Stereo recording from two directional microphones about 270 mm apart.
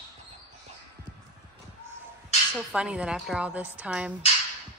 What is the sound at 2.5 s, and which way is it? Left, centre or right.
Speech, centre.